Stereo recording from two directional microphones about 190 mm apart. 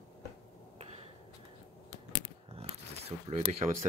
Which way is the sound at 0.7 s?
30° right (ahead or behind).